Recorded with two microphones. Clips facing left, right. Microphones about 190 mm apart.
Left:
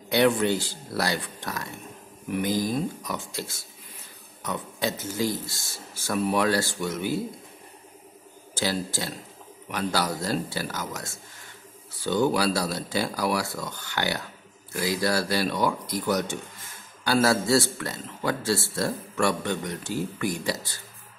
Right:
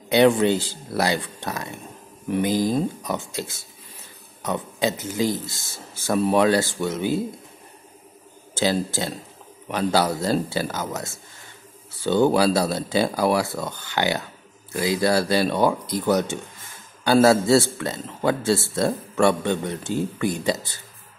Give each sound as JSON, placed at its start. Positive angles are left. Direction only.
{"t": 0.1, "sound": "a man's voice", "side_deg": -25}
{"t": 8.5, "sound": "a man's voice", "side_deg": -20}
{"t": 12.3, "sound": "a man's voice", "side_deg": -25}